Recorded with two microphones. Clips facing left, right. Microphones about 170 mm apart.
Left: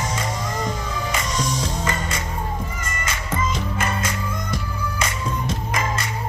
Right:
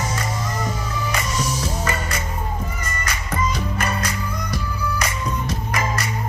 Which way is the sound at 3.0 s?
25° left (ahead or behind).